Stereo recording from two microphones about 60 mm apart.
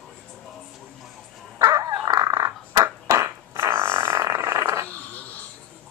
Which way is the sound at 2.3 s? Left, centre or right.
Right.